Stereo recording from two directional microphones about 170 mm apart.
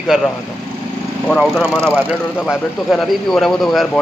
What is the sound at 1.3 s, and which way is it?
A man's voice, centre (ahead or behind).